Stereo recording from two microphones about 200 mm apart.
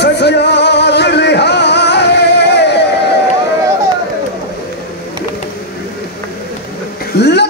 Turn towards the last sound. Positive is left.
turn(degrees=60)  # may be behind; listen again after turning